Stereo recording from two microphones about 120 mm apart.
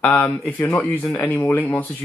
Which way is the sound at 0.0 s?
15° left (ahead or behind).